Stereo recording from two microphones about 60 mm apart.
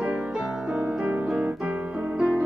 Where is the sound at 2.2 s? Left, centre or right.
Centre.